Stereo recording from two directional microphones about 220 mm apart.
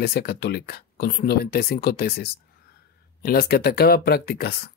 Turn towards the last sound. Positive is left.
turn(degrees=45)  # may be behind; listen again after turning